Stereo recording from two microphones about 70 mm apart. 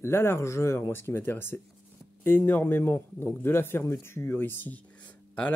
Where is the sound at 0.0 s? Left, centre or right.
Left.